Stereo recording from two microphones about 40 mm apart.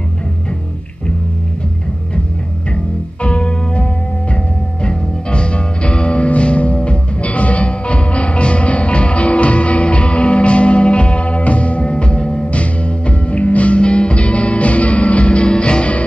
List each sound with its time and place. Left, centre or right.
2.7 s music: left